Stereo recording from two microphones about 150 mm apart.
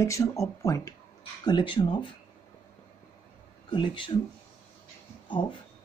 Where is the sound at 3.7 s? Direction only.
35° left (ahead or behind).